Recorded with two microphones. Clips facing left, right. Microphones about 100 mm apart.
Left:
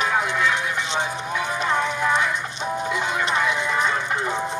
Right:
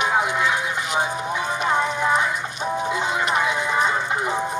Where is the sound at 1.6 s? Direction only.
20° right (ahead or behind).